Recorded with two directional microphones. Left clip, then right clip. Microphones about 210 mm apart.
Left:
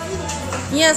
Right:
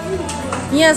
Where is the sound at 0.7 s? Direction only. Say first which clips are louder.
Right 3 dB; 5° left (ahead or behind).